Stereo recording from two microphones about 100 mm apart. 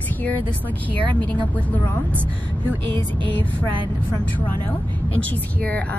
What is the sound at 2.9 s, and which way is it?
Music, 55° right (ahead or behind).